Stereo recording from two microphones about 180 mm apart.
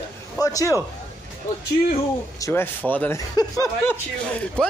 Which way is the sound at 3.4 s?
20° left (ahead or behind).